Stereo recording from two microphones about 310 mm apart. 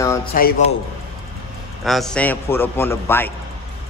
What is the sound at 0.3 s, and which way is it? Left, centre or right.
Speech, left.